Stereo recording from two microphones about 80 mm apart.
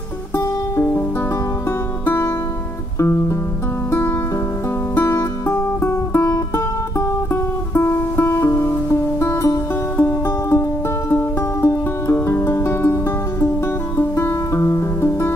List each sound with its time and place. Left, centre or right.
0.4 s music: left
3.0 s music: left
4.9 s music: left
7.7 s music: left